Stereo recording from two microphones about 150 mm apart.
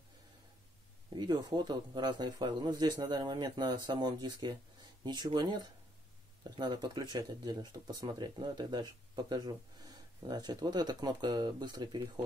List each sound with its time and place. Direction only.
1.1 s speech: 30° right (ahead or behind)